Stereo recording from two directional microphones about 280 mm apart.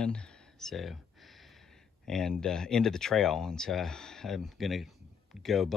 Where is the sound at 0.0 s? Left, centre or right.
Centre.